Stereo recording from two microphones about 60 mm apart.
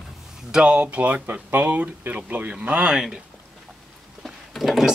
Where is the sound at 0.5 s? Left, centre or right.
Centre.